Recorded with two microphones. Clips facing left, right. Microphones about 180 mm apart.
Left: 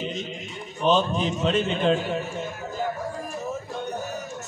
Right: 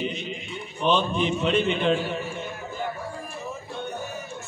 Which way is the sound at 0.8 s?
40° left (ahead or behind).